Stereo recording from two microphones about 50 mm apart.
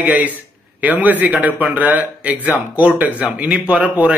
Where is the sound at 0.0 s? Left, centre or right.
Right.